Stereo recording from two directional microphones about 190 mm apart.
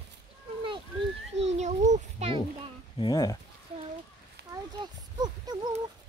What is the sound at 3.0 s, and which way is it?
Speech, 20° left (ahead or behind).